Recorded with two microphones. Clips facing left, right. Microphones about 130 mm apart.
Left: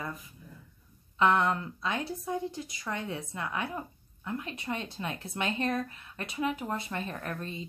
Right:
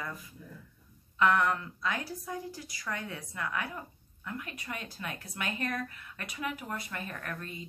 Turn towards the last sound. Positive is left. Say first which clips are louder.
# left 3 dB
turn(degrees=25)  # may be behind; listen again after turning